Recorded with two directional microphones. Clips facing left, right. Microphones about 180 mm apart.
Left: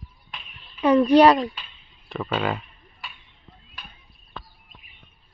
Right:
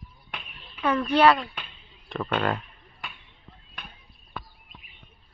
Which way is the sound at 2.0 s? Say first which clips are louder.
Left 1 dB; centre (ahead or behind).